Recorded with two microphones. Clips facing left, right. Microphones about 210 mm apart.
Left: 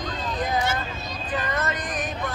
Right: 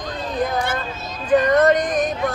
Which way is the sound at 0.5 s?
55° right (ahead or behind).